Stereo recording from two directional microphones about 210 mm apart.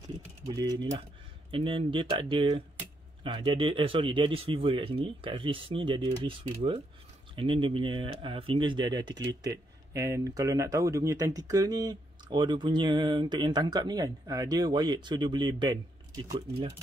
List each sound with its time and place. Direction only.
0.5 s speech: 20° right (ahead or behind)